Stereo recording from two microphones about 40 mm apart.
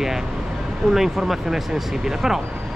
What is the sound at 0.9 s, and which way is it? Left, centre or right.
Speech, centre.